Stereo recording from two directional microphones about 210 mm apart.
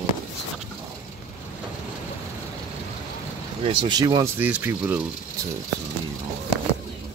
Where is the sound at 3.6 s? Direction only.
25° right (ahead or behind); by 5.0 s 5° right (ahead or behind).